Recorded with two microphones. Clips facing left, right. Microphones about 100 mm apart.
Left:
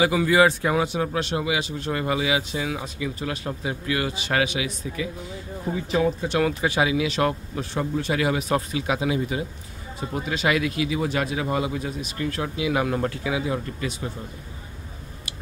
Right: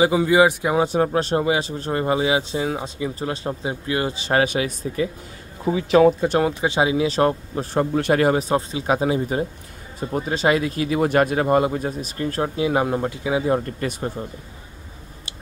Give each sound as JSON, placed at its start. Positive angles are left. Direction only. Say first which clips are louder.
{"t": 0.0, "sound": "speech", "louder": "right 3 dB", "side_deg": -25}
{"t": 0.7, "sound": "speech", "louder": "right 5 dB", "side_deg": -40}
{"t": 5.7, "sound": "speech", "louder": "right 8 dB", "side_deg": -90}
{"t": 6.4, "sound": "speech", "louder": "right 2 dB", "side_deg": -25}
{"t": 7.9, "sound": "speech", "louder": "right 7 dB", "side_deg": -65}
{"t": 8.2, "sound": "speech", "louder": "right 4 dB", "side_deg": -40}
{"t": 8.5, "sound": "speech", "louder": "right 3 dB", "side_deg": -30}
{"t": 13.0, "sound": "speech", "louder": "right 1 dB", "side_deg": -20}
{"t": 13.5, "sound": "speech", "louder": "right 6 dB", "side_deg": -50}